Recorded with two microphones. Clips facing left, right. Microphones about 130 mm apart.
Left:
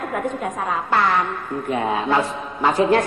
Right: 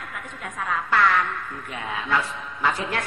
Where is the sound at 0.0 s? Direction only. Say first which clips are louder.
Left 12 dB; 40° left (ahead or behind).